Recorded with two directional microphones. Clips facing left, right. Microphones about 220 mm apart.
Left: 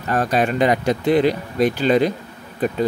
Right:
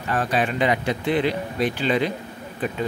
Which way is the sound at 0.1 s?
40° left (ahead or behind).